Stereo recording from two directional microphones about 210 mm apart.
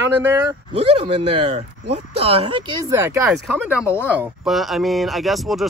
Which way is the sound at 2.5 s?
20° right (ahead or behind).